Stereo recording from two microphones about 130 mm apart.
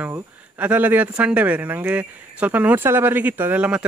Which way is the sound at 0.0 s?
10° right (ahead or behind).